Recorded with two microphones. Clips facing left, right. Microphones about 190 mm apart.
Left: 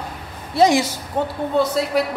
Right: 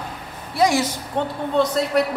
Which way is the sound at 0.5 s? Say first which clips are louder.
Left 3 dB; 25° left (ahead or behind).